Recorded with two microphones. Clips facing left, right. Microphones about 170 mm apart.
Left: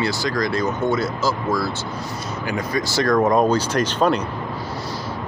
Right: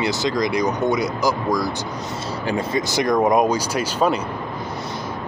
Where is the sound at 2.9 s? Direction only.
20° right (ahead or behind).